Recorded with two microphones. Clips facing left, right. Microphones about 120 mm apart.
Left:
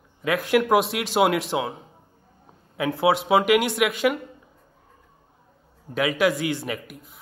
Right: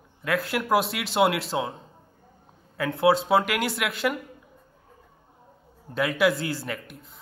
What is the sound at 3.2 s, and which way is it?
Speech, centre (ahead or behind).